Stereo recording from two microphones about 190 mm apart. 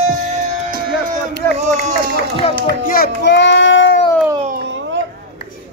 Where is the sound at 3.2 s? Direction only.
70° left (ahead or behind).